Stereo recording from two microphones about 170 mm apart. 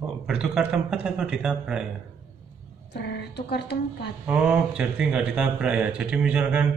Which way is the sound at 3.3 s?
75° left (ahead or behind).